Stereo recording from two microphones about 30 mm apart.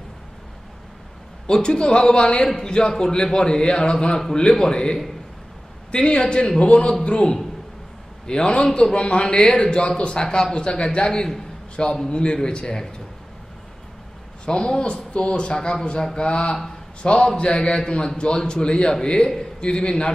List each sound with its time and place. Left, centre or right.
1.5 s speech: left
10.2 s speech: left
10.5 s a man's voice: left
14.4 s speech: left